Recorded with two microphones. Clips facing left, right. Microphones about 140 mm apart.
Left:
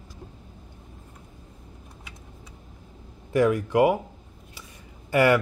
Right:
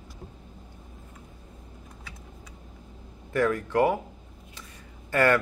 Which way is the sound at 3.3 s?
15° left (ahead or behind).